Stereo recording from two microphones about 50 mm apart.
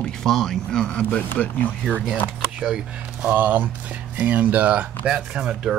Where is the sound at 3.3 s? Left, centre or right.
Right.